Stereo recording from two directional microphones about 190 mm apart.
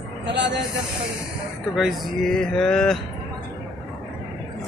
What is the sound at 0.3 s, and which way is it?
Speech, 70° right (ahead or behind).